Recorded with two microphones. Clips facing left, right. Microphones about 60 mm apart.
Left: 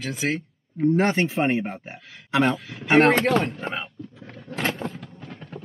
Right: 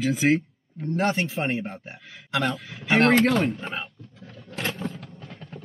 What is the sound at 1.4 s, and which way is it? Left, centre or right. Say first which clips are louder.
A man's voice: left 4 dB; left.